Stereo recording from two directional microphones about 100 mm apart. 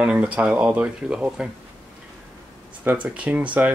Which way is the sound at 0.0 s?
10° right (ahead or behind).